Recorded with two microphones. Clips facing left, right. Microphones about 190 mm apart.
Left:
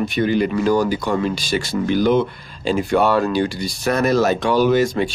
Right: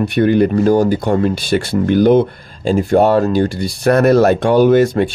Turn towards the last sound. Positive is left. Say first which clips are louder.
# right 5 dB
turn(degrees=-55)  # may be behind; listen again after turning